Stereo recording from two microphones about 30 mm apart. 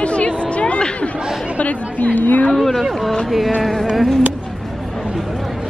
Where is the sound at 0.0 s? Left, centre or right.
Left.